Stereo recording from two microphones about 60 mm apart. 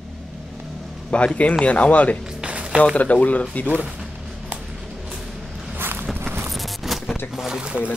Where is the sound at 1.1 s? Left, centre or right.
Left.